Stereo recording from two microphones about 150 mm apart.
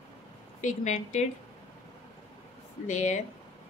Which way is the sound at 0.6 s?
55° left (ahead or behind).